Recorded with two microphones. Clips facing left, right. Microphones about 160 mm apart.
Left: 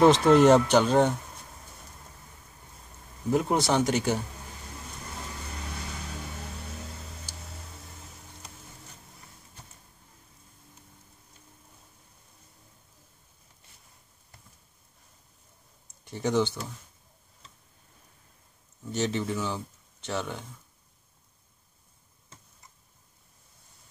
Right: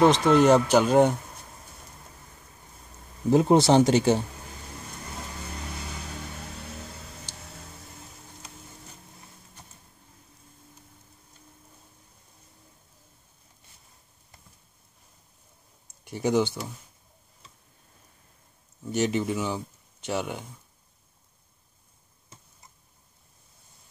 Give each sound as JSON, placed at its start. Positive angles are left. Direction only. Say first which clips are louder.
{"t": 0.0, "sound": "speech", "louder": "left 1 dB", "side_deg": 0}
{"t": 3.3, "sound": "speech", "louder": "right 6 dB", "side_deg": -25}
{"t": 16.0, "sound": "speech", "louder": "right 2 dB", "side_deg": -10}
{"t": 18.9, "sound": "speech", "louder": "right 3 dB", "side_deg": -15}